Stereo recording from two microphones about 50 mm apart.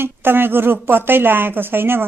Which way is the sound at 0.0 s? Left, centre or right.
Right.